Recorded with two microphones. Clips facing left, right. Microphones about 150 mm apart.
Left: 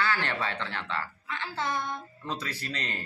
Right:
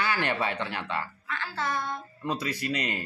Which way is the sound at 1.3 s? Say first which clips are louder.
Even; 20° left (ahead or behind).